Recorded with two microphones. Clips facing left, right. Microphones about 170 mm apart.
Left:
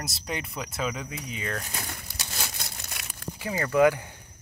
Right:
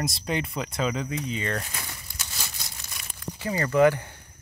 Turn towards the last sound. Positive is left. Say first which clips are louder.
# right 1 dB
turn(degrees=15)  # may be behind; listen again after turning